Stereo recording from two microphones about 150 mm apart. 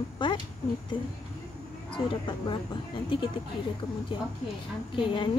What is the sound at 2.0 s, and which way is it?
Speech, 35° left (ahead or behind).